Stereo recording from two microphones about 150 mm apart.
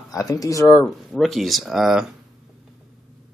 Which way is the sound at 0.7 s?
5° left (ahead or behind).